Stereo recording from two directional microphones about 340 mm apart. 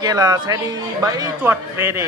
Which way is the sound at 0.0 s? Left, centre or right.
Centre.